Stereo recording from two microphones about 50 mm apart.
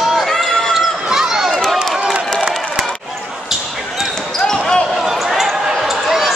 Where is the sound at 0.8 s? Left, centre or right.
Centre.